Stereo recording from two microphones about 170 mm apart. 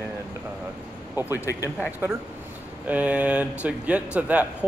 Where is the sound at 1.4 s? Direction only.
20° left (ahead or behind).